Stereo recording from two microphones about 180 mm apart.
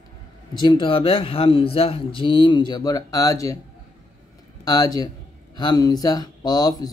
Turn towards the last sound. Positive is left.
turn(degrees=20)  # may be behind; listen again after turning